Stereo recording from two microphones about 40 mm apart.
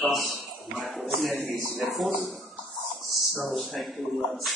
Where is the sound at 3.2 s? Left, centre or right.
Centre.